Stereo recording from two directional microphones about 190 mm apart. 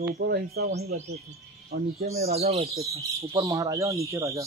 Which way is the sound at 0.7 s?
35° right (ahead or behind).